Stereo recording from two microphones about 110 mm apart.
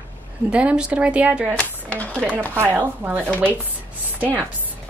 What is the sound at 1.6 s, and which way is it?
Speech, 10° left (ahead or behind).